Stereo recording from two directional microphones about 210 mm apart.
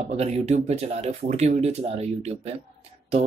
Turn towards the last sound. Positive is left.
turn(degrees=-30)  # may be behind; listen again after turning